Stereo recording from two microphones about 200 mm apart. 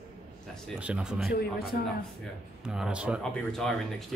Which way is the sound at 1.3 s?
50° left (ahead or behind).